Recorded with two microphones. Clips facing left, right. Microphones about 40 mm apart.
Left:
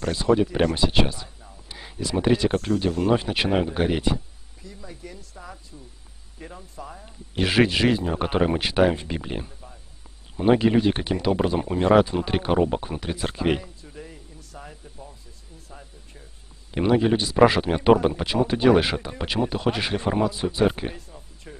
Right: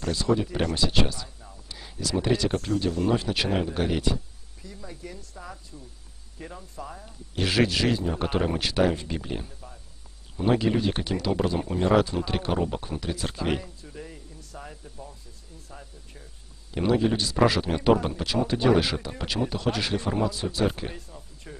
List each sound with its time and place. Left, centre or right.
0.1 s speech: centre
2.5 s speech: centre
3.1 s speech: left
4.6 s speech: centre
7.1 s speech: left
13.6 s a sound: centre
16.7 s speech: left
20.9 s a sound: centre